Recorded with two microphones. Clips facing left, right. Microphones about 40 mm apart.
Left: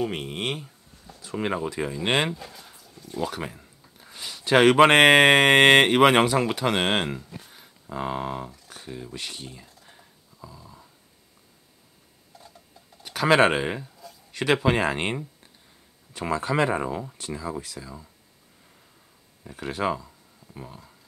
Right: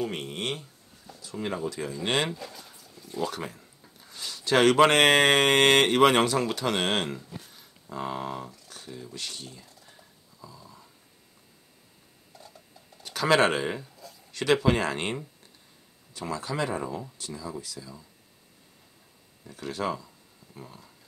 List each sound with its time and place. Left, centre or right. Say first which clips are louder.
0.0 s speech: left 3 dB; centre
1.2 s speech: left 4 dB; left; by 10.9 s centre
13.0 s speech: left 3 dB; centre
16.1 s speech: left 6 dB; left
19.4 s speech: left 4 dB; left